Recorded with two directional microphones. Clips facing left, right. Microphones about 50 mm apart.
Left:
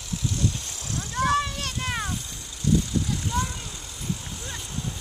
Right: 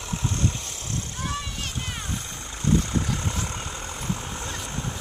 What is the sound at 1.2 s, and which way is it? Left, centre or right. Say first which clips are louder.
Vehicle: left 11 dB; left.